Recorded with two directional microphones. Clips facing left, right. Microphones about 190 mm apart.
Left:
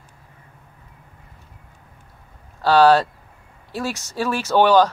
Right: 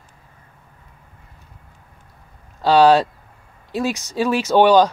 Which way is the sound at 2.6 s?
15° right (ahead or behind).